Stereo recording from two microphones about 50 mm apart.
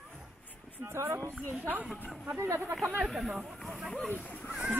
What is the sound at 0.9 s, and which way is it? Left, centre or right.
Speech, right.